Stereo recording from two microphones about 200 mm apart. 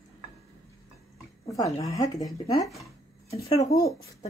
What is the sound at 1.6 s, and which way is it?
Speech, 15° left (ahead or behind).